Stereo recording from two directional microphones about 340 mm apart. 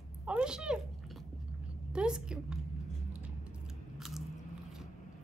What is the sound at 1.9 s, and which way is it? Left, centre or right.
Speech, centre.